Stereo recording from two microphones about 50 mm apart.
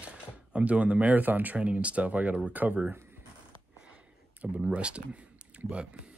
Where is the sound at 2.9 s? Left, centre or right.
Right.